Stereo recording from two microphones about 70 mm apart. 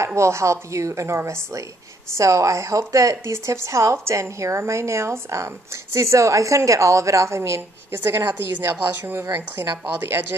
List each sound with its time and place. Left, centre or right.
0.0 s a woman's voice: right